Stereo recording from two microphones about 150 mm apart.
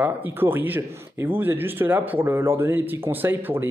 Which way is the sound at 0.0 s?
15° right (ahead or behind).